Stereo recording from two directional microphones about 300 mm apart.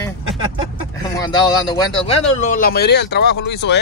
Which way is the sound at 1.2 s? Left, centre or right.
Centre.